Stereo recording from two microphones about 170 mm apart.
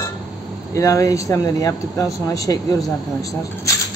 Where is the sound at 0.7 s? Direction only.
20° left (ahead or behind).